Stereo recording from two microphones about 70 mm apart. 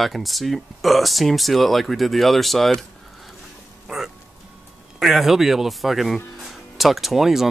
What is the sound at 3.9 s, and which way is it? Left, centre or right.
Speech, centre.